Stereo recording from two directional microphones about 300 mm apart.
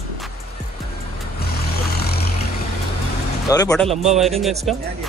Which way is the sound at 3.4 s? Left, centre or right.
Centre.